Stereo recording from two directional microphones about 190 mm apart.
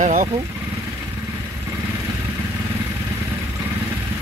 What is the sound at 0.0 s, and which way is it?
Vehicle, 40° right (ahead or behind).